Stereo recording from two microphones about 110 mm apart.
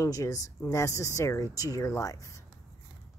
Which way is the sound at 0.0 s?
30° left (ahead or behind).